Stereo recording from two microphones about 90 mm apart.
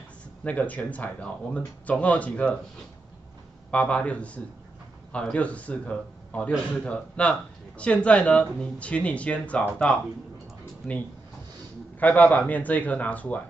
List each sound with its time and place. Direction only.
0.4 s speech: 15° left (ahead or behind)
3.7 s speech: 15° left (ahead or behind)
10.6 s a sound: 20° left (ahead or behind)
12.0 s speech: 15° left (ahead or behind)